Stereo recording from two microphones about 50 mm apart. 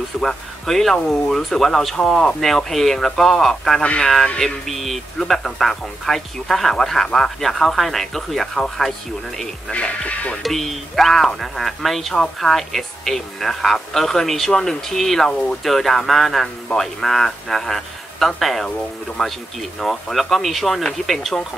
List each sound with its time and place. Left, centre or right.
0.2 s speech: centre
9.7 s speech: left
10.4 s speech: centre